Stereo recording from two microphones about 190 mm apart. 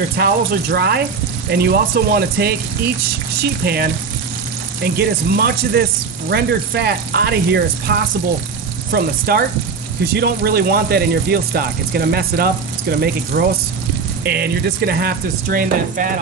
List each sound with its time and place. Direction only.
0.2 s speech: 55° right (ahead or behind)
8.9 s speech: 55° right (ahead or behind)